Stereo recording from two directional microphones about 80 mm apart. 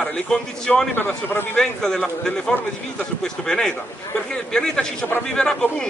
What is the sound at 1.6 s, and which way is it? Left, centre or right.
Speech, centre.